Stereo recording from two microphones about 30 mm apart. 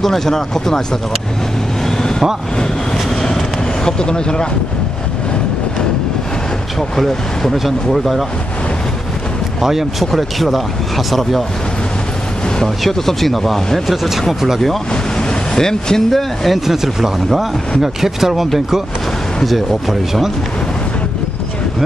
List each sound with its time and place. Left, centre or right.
0.0 s speech: centre
1.9 s vehicle: centre
7.5 s speech: centre
9.6 s speech: centre
11.1 s speech: centre
12.6 s speech: centre
15.1 s vehicle: left
16.1 s speech: centre
16.5 s speech: centre